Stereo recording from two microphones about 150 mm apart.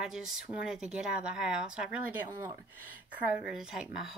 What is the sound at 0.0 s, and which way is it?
Speech, 5° right (ahead or behind).